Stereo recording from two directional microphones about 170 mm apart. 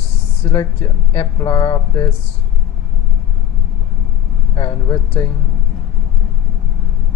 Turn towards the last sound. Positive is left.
turn(degrees=20)  # may be behind; listen again after turning